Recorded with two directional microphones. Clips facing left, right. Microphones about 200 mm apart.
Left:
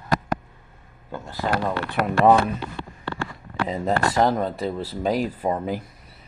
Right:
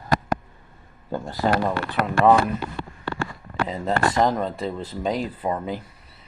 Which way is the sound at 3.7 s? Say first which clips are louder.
Left 1 dB; 10° left (ahead or behind).